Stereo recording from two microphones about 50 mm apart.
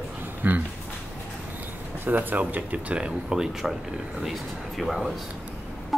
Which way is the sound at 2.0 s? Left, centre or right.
Right.